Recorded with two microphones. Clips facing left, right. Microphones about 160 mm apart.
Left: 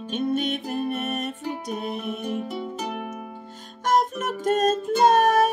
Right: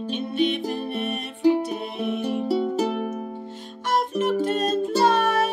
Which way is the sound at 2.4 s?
35° right (ahead or behind).